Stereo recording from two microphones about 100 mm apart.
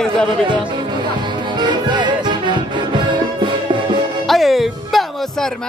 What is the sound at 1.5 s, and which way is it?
Music, 45° right (ahead or behind).